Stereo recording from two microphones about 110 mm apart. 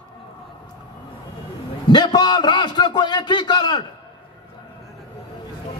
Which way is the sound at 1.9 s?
40° left (ahead or behind).